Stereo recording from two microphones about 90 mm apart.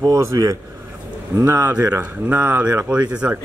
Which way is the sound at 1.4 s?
20° right (ahead or behind).